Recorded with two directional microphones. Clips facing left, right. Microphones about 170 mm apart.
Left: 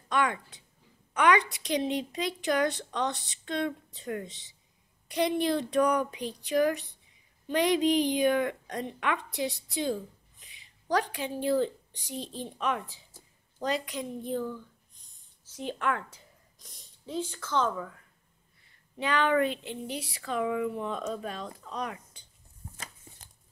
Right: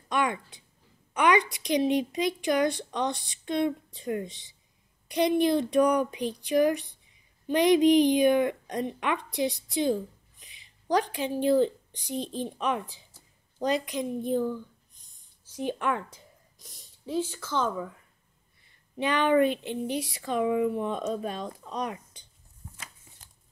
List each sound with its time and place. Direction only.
0.1 s a woman's voice: 15° right (ahead or behind)
17.0 s a woman's voice: 5° right (ahead or behind)
18.9 s speech: 20° right (ahead or behind)